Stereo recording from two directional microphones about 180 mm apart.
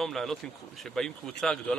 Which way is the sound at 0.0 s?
Centre (ahead or behind).